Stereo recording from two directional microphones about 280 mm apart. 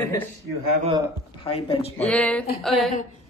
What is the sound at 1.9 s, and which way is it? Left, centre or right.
A woman's voice, centre.